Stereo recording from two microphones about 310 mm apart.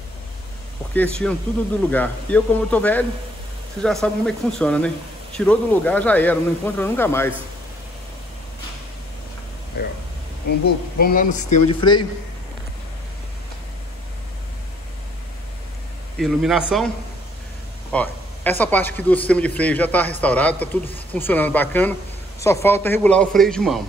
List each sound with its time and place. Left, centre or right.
0.9 s speech: centre
11.0 s speech: left
16.2 s speech: centre
17.9 s speech: centre